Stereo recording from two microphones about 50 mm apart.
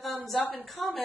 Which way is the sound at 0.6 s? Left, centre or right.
Centre.